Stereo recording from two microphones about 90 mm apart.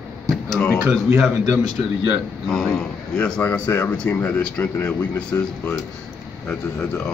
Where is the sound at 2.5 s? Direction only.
5° left (ahead or behind).